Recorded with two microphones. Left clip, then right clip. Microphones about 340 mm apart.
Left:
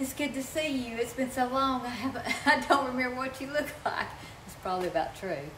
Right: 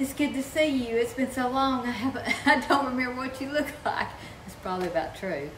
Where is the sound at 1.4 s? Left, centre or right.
Centre.